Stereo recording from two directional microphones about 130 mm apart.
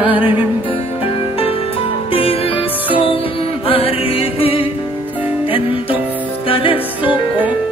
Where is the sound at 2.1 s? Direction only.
45° left (ahead or behind).